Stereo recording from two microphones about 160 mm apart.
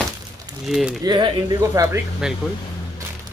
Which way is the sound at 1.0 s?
25° right (ahead or behind).